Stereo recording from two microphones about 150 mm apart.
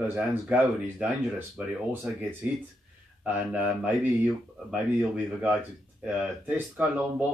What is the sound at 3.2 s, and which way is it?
Speech, 10° right (ahead or behind).